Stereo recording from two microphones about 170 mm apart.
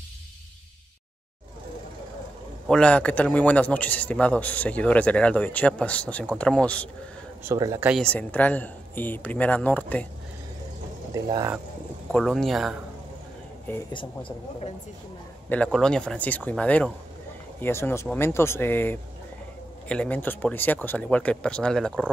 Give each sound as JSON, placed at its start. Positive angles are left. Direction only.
{"t": 2.7, "sound": "a man's voice", "side_deg": 5}
{"t": 7.4, "sound": "speech", "side_deg": -20}
{"t": 8.0, "sound": "a man's voice", "side_deg": 10}
{"t": 11.1, "sound": "speech", "side_deg": -20}
{"t": 12.1, "sound": "speech", "side_deg": 5}
{"t": 13.7, "sound": "a man's voice", "side_deg": 15}
{"t": 13.9, "sound": "speech", "side_deg": 30}
{"t": 15.5, "sound": "a man's voice", "side_deg": 5}